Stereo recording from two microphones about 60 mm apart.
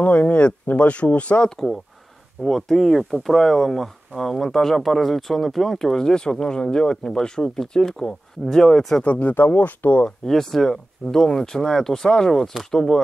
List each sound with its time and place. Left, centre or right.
0.0 s speech: left
2.4 s speech: centre
9.0 s speech: left
10.0 s speech: centre